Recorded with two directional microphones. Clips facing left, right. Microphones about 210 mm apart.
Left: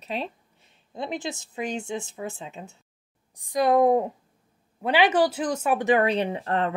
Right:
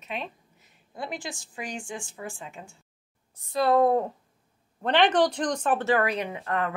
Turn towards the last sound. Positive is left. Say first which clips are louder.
# left 4 dB
turn(degrees=30)  # may be behind; listen again after turning